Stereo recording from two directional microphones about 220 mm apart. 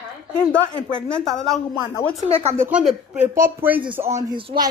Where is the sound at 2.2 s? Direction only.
25° right (ahead or behind).